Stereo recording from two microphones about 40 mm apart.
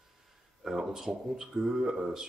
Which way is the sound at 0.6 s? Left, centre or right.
Centre.